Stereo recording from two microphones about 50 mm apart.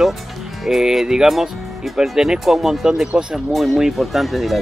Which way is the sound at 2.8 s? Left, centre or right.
Centre.